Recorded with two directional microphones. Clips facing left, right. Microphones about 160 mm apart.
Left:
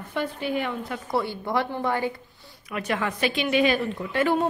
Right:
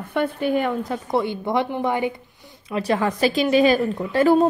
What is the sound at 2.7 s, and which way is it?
A woman's voice, 35° right (ahead or behind).